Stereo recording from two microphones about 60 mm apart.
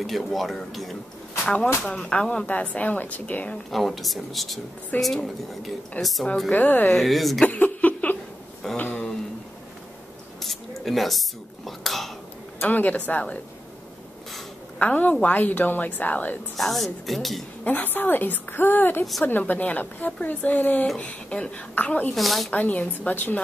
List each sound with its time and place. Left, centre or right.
0.0 s speech: centre
1.4 s a woman's voice: centre
3.7 s speech: centre
6.5 s a woman's voice: left
6.9 s speech: centre
7.4 s a sound: left
8.7 s a woman's voice: left
10.4 s speech: centre
12.5 s a woman's voice: left
14.8 s a woman's voice: left
16.5 s speech: centre
17.6 s a woman's voice: left
22.1 s speech: centre
22.5 s a woman's voice: left